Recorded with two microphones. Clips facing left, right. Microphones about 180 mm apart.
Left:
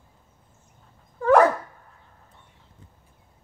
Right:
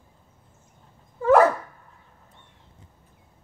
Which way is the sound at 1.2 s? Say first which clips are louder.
Even; 5° right (ahead or behind).